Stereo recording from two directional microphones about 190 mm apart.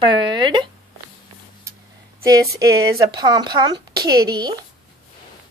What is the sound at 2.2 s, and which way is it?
A woman's voice, 20° right (ahead or behind).